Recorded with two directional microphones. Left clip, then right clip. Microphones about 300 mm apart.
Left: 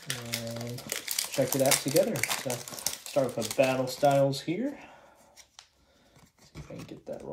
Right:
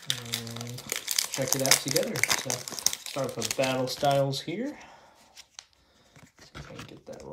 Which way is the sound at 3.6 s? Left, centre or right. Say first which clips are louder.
Left 3 dB; centre.